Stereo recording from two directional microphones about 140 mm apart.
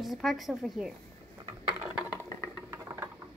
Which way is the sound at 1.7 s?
15° right (ahead or behind).